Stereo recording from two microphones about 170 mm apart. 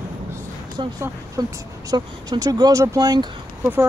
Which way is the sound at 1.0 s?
20° right (ahead or behind).